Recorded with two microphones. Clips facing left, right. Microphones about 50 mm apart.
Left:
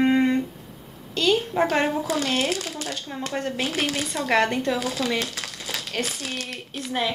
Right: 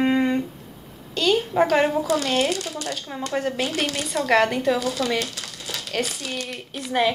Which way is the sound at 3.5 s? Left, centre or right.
Centre.